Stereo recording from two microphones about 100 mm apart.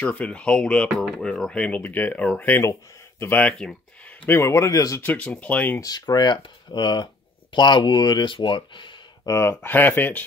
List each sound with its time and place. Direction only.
0.1 s speech: 15° left (ahead or behind)
2.6 s speech: 25° left (ahead or behind)
3.4 s speech: 10° left (ahead or behind)
4.3 s speech: 30° left (ahead or behind)
5.0 s speech: 15° left (ahead or behind)
5.8 s speech: 40° left (ahead or behind)
9.3 s speech: 25° left (ahead or behind)